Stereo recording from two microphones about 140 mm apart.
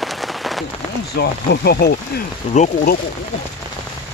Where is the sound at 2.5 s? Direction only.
60° left (ahead or behind).